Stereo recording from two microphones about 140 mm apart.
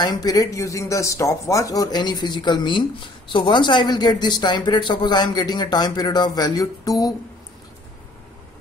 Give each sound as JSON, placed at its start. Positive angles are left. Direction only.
{"t": 0.0, "sound": "speech", "side_deg": 30}